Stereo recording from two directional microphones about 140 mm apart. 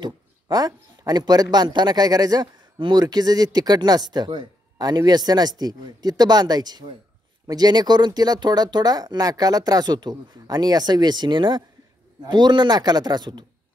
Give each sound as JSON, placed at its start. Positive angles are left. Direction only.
{"t": 0.0, "sound": "a man's voice", "side_deg": -30}